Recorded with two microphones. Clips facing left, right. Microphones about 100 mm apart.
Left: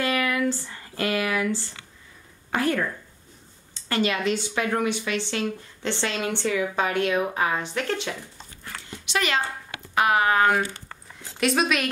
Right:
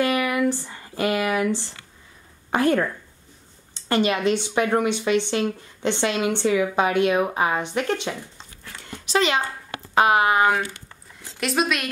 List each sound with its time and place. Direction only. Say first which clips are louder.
0.0 s a woman's voice: right 3 dB; 15° right (ahead or behind)
3.9 s a woman's voice: right 4 dB; 20° right (ahead or behind)
9.1 s speech: right 5 dB; 35° right (ahead or behind)
9.9 s a woman's voice: right 3 dB; 20° right (ahead or behind)
11.3 s a woman's voice: left 1 dB; centre (ahead or behind)